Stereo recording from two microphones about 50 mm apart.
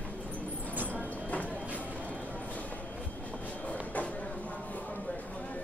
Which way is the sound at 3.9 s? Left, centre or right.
Left.